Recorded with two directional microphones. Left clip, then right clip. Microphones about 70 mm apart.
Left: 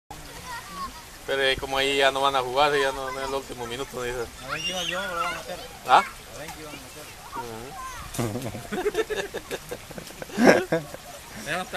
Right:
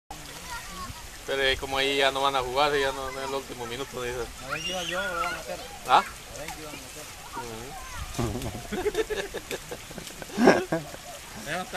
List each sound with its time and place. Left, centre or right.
1.3 s speech: left
8.7 s speech: left
10.3 s a sound: left
11.5 s speech: left